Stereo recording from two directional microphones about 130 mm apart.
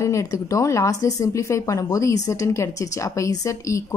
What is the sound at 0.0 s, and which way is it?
A woman's voice, 25° left (ahead or behind).